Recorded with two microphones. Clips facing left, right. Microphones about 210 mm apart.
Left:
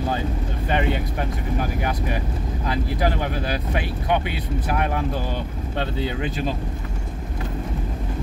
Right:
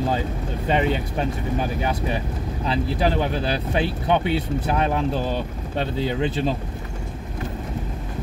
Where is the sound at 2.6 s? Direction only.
25° right (ahead or behind).